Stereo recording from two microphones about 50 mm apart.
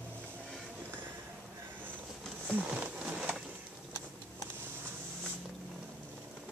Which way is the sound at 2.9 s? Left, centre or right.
Centre.